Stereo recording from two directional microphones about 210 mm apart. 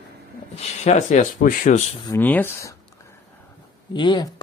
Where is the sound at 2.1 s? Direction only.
10° left (ahead or behind).